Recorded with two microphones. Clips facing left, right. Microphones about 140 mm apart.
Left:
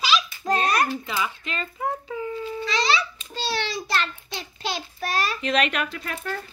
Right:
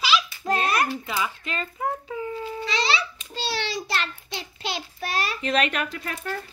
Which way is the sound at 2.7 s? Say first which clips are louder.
Left 2 dB; 25° right (ahead or behind).